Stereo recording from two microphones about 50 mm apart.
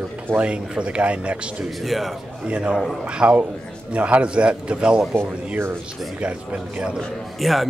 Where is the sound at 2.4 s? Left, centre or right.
Right.